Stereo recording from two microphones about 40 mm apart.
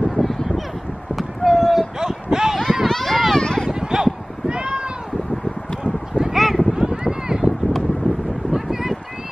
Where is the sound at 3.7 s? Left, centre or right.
Centre.